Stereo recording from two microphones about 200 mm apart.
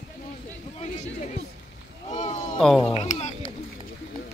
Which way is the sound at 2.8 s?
35° left (ahead or behind).